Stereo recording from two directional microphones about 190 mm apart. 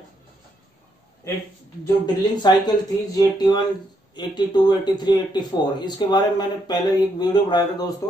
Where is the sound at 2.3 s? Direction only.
20° left (ahead or behind).